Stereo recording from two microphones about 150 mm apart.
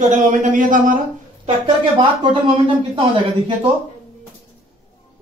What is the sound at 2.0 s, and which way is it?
Speech, 35° right (ahead or behind).